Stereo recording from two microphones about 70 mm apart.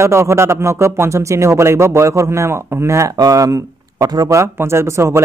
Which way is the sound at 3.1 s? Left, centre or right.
Right.